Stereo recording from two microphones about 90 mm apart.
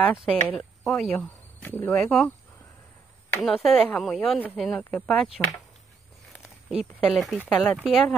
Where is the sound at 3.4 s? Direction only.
5° left (ahead or behind).